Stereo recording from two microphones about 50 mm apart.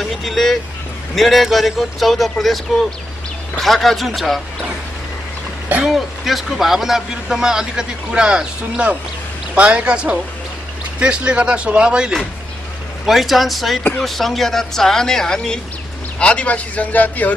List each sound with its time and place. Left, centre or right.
0.0 s speech: centre
5.9 s speech: centre
13.0 s speech: centre
16.2 s speech: left